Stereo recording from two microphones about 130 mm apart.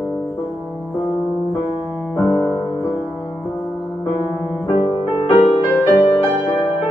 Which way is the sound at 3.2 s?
20° left (ahead or behind).